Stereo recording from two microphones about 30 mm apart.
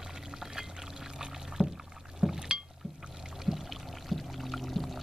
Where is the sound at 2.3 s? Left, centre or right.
Centre.